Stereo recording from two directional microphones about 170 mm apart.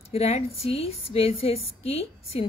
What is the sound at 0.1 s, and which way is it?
Speech, 35° left (ahead or behind).